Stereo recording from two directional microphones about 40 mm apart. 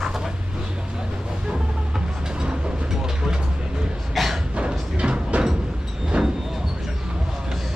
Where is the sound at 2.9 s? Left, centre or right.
Centre.